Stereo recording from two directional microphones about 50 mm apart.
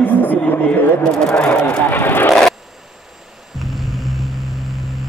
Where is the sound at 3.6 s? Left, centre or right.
Centre.